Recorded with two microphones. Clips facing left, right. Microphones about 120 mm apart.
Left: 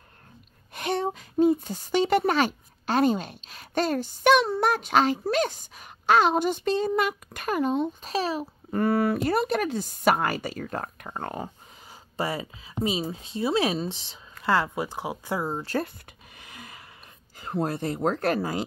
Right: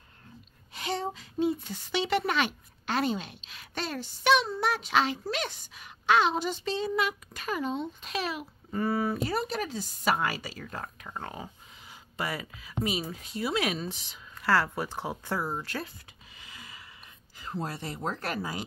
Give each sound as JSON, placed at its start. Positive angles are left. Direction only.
{"t": 0.7, "sound": "speech", "side_deg": 55}
{"t": 8.0, "sound": "a child's voice", "side_deg": 35}
{"t": 8.7, "sound": "speech", "side_deg": 65}
{"t": 11.9, "sound": "speech", "side_deg": 30}
{"t": 14.5, "sound": "speech", "side_deg": 15}
{"t": 15.4, "sound": "speech", "side_deg": 25}
{"t": 16.3, "sound": "a sound", "side_deg": 55}
{"t": 17.4, "sound": "speech", "side_deg": 55}